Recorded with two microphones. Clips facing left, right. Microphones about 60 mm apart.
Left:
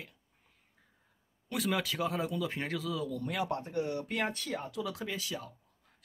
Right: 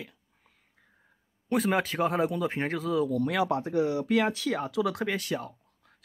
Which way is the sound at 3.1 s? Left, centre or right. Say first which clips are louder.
Right 8 dB; right.